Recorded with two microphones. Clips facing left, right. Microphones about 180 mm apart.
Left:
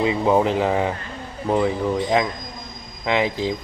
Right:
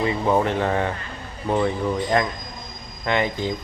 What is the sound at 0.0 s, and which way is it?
Speech, 10° left (ahead or behind).